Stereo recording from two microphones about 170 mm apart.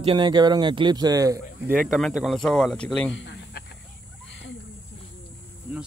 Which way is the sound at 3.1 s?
90° left.